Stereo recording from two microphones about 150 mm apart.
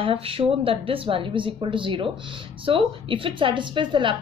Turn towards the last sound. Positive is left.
turn(degrees=-35)  # may be behind; listen again after turning